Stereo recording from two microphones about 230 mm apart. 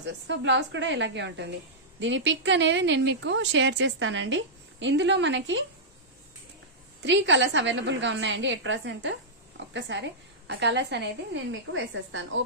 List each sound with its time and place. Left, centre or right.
0.0 s speech: right
7.1 s speech: right